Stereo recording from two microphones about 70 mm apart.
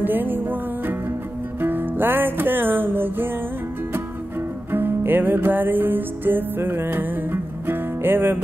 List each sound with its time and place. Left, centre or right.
0.0 s music: right
4.7 s music: right